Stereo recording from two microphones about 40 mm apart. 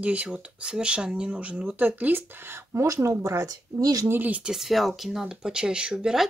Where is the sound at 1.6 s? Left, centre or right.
Right.